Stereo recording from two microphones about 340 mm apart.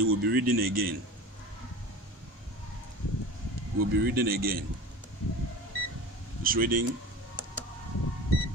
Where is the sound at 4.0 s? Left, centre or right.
Right.